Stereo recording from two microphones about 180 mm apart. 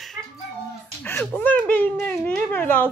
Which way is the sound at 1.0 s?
10° left (ahead or behind).